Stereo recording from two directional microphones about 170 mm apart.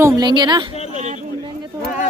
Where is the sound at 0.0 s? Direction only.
25° right (ahead or behind).